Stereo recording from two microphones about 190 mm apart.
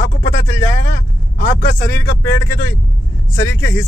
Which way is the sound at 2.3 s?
15° left (ahead or behind).